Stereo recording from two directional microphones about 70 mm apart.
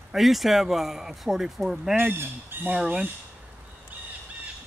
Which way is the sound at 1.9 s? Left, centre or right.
Right.